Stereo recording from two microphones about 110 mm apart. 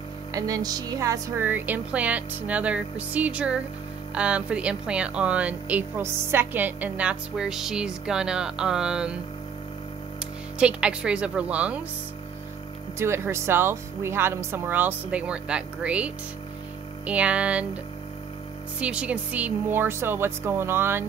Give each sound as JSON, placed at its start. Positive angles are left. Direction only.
{"t": 0.3, "sound": "speech", "side_deg": -30}
{"t": 1.4, "sound": "speech", "side_deg": -15}
{"t": 10.6, "sound": "speech", "side_deg": -10}
{"t": 13.0, "sound": "speech", "side_deg": -25}
{"t": 18.8, "sound": "speech", "side_deg": -10}